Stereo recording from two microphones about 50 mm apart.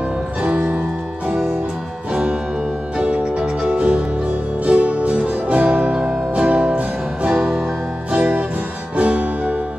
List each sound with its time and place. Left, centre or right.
3.0 s music: right
5.9 s music: centre
7.3 s music: centre
8.9 s music: right